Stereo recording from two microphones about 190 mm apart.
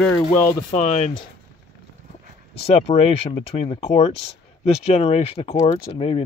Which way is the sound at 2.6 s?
30° left (ahead or behind).